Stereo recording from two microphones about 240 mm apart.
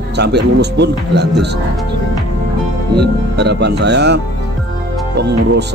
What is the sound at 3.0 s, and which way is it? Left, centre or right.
Speech, right.